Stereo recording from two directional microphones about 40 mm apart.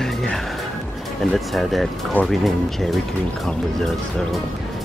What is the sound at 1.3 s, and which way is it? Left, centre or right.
Speech, centre.